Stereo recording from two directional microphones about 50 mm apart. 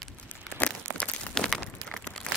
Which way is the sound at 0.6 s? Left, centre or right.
Left.